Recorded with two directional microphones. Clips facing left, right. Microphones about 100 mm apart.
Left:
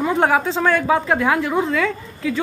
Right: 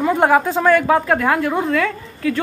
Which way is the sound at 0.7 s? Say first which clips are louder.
Right 2 dB; 5° left (ahead or behind).